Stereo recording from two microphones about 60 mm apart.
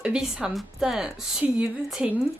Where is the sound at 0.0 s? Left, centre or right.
Centre.